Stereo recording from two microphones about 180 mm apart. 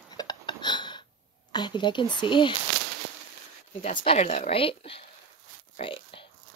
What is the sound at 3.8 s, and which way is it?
Speech, 40° left (ahead or behind).